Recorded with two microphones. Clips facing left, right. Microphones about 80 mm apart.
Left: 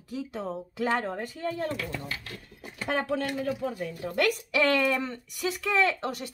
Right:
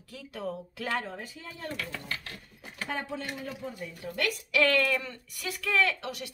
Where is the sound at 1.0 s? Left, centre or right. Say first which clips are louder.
Left 9 dB; left.